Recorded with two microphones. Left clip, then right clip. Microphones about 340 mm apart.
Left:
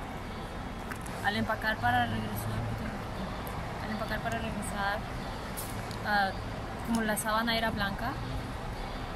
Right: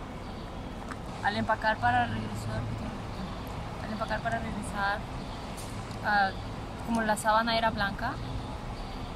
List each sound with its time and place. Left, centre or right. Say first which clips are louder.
1.2 s a woman's voice: right 3 dB; centre
4.1 s a woman's voice: right 4 dB; centre
6.0 s a woman's voice: right 3 dB; centre